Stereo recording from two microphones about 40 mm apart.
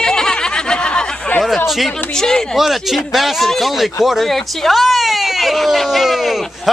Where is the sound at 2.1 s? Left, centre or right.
Centre.